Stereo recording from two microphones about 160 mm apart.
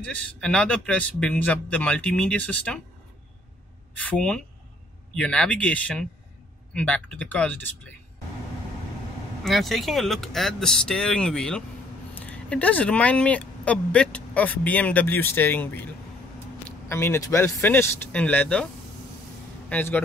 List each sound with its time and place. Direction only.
0.0 s speech: 5° left (ahead or behind)
4.0 s speech: 5° left (ahead or behind)
9.4 s speech: centre (ahead or behind)
16.9 s speech: 15° left (ahead or behind)
19.7 s speech: 10° left (ahead or behind)